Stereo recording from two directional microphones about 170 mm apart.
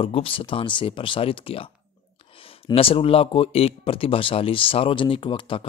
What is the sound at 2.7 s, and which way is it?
Speech, 30° left (ahead or behind).